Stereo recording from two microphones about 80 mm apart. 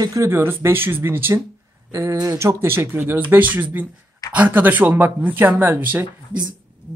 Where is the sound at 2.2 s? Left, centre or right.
Right.